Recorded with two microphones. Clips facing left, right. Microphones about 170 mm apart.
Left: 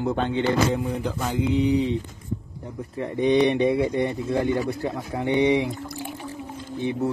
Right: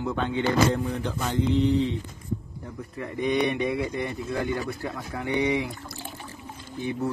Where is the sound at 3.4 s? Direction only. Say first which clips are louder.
Left 6 dB; 30° left (ahead or behind).